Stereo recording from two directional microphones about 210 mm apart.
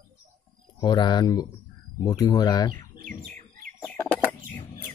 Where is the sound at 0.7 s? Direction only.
20° left (ahead or behind).